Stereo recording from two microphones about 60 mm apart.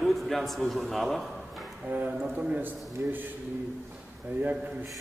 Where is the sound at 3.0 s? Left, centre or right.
Right.